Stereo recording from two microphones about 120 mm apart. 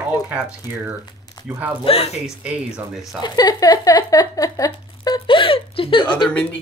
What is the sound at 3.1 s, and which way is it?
Speech, 35° left (ahead or behind).